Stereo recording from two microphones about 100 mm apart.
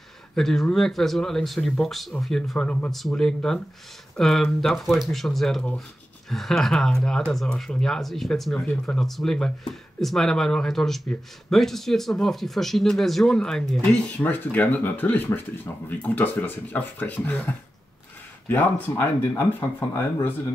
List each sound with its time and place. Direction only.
0.4 s speech: 5° left (ahead or behind)